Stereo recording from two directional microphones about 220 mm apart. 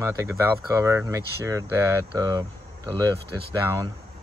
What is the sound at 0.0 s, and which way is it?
Speech, 15° right (ahead or behind).